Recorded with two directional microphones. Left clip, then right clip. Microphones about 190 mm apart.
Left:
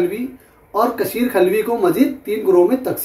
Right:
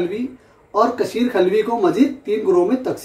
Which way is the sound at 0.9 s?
10° left (ahead or behind).